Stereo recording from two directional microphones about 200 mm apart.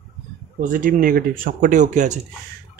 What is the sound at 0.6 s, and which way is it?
Speech, 40° right (ahead or behind).